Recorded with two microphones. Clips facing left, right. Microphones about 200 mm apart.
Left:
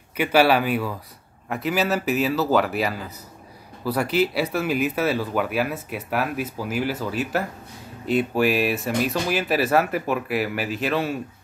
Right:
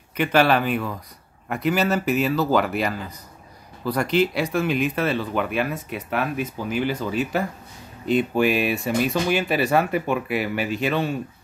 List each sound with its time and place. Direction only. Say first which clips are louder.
0.2 s speech: left 1 dB; 10° left (ahead or behind)